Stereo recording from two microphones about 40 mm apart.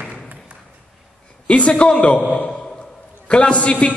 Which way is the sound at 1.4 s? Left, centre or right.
Left.